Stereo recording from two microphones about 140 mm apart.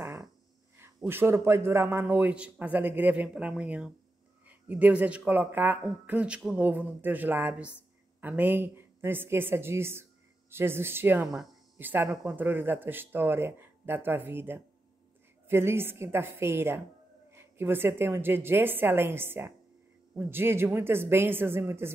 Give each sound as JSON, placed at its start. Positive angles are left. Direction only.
{"t": 0.7, "sound": "speech", "side_deg": -15}